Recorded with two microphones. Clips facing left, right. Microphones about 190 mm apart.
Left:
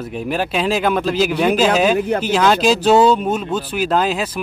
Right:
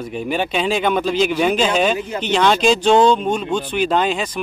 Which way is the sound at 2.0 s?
60° left (ahead or behind).